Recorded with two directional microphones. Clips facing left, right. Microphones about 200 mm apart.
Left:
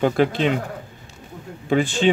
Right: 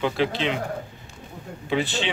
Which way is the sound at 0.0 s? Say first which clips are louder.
Left 5 dB; 50° left (ahead or behind).